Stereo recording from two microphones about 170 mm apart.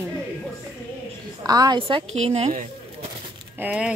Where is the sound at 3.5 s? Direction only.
10° right (ahead or behind).